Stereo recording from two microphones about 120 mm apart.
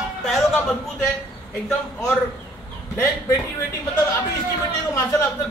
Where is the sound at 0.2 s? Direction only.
Centre (ahead or behind).